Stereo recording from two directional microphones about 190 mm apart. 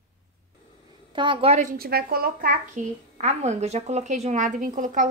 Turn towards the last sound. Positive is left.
turn(degrees=-40)  # may be behind; listen again after turning